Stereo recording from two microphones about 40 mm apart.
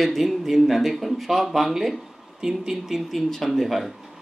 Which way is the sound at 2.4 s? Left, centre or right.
Centre.